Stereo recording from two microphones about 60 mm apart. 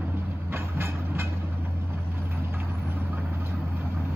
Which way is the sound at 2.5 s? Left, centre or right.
Right.